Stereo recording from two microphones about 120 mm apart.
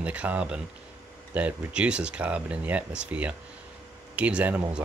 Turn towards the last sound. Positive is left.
turn(degrees=-10)  # may be behind; listen again after turning